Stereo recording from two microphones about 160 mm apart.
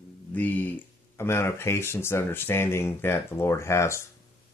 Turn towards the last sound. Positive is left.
turn(degrees=15)  # may be behind; listen again after turning